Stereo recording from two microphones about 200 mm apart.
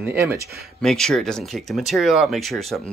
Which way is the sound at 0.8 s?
5° left (ahead or behind).